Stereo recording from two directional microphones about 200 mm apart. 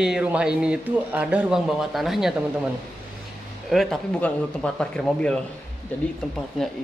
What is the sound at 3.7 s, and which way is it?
A man's voice, centre (ahead or behind).